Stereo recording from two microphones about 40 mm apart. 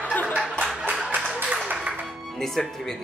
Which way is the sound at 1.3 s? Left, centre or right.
Right.